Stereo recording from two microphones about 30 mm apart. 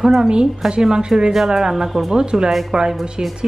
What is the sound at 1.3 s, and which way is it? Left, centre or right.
Speech, centre.